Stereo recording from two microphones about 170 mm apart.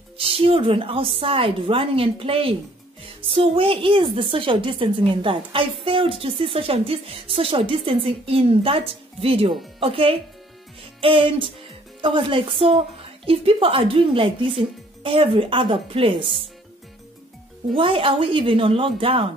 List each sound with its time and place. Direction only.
0.2 s a woman's voice: 35° right (ahead or behind)
17.7 s a woman's voice: 30° right (ahead or behind)